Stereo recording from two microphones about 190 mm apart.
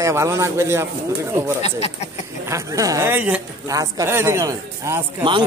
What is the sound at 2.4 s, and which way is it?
A man's voice, 15° right (ahead or behind).